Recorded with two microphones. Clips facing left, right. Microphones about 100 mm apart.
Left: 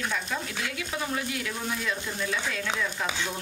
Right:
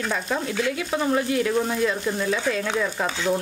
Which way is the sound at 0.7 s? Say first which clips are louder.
Right 8 dB; 35° right (ahead or behind).